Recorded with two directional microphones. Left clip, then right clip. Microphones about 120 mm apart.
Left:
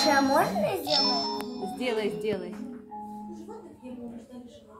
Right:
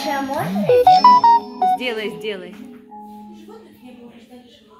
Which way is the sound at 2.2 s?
15° right (ahead or behind).